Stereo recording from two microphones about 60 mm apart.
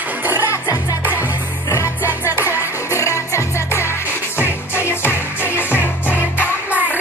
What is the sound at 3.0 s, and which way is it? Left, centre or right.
Music, left.